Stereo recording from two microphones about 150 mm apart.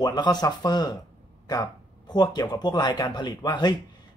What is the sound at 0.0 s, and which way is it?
Speech, 25° left (ahead or behind).